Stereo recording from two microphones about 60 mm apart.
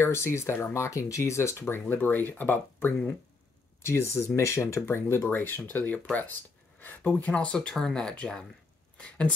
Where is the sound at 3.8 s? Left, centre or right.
Left.